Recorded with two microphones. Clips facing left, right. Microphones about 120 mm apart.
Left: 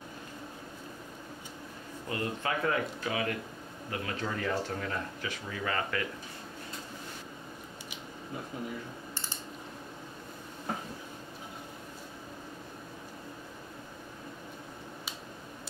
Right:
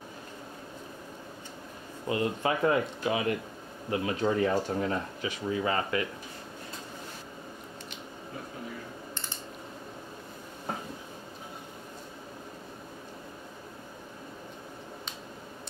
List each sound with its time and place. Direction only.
2.0 s speech: 20° right (ahead or behind)